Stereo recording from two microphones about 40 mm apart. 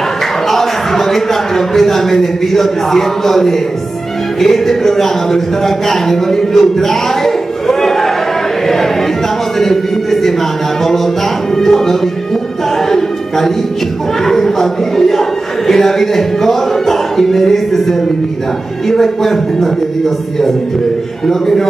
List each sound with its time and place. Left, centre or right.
0.5 s a sound: centre
1.7 s a man's voice: centre
4.4 s music: centre
5.9 s speech: centre
8.6 s a sound: centre
11.5 s music: centre
14.2 s a sound: centre
18.9 s music: centre
21.3 s a man's voice: centre